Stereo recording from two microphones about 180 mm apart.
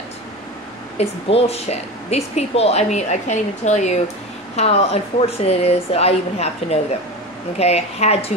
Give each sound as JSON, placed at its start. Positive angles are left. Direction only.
{"t": 0.9, "sound": "speech", "side_deg": 35}